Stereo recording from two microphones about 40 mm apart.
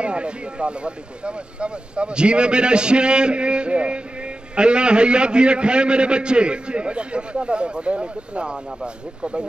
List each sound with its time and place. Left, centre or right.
0.0 s speech: right